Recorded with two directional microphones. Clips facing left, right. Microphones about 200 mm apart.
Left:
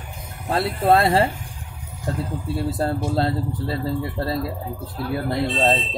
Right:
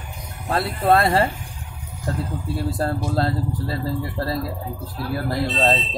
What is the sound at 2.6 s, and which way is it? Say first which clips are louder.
Speech: left 1 dB; 25° left (ahead or behind).